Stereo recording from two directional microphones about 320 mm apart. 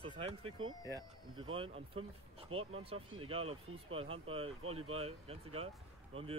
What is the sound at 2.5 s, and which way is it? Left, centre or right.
Speech, right.